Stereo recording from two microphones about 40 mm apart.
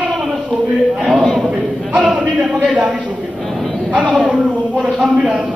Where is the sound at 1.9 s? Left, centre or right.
Right.